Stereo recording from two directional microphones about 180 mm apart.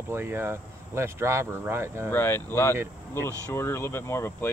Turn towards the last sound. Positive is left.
turn(degrees=15)  # may be behind; listen again after turning